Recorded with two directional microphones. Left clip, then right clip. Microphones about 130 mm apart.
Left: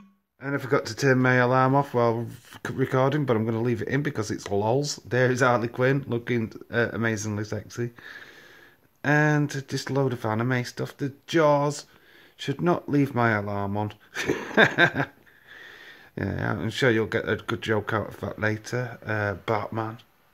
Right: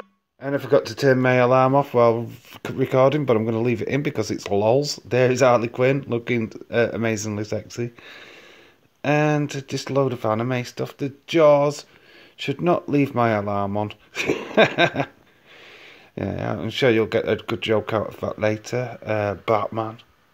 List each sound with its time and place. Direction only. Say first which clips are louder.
0.6 s speech: right 6 dB; centre (ahead or behind)
13.4 s speech: right 6 dB; 20° right (ahead or behind)
13.7 s speech: right 4 dB; 5° right (ahead or behind)
19.7 s speech: right 4 dB; 5° left (ahead or behind)